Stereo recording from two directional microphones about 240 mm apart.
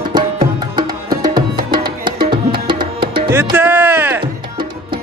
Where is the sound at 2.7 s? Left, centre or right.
Right.